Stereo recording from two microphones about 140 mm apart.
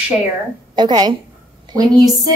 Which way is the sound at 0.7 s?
30° right (ahead or behind).